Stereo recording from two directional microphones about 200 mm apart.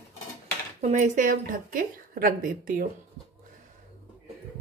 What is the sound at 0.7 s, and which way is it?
A woman's voice, 35° right (ahead or behind).